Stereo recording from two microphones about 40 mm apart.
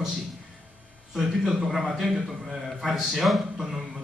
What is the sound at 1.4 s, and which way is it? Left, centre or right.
Speech, centre.